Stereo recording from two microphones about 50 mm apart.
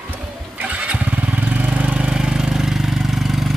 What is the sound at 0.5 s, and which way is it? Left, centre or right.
Vehicle, right.